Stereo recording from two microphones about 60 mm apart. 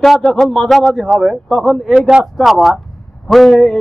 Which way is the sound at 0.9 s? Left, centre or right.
Centre.